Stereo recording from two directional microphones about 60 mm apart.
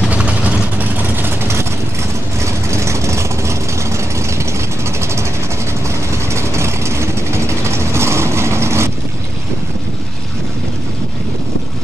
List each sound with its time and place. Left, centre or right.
0.1 s vehicle: right
1.0 s vehicle: right
6.3 s vehicle: right